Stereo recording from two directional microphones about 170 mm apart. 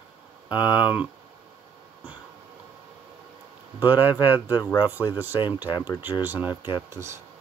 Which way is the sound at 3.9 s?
10° right (ahead or behind).